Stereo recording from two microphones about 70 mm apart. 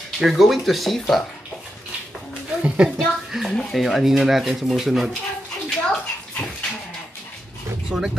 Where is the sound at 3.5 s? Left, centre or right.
Centre.